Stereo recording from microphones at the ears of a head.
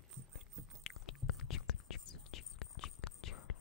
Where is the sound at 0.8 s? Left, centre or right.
Left.